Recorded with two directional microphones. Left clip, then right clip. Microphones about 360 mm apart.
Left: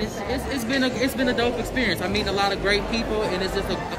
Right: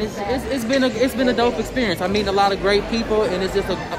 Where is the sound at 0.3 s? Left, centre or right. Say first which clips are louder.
Right 6 dB; centre.